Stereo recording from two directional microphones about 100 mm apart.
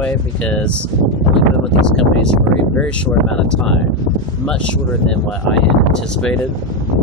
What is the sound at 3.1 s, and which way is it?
Speech, 25° left (ahead or behind).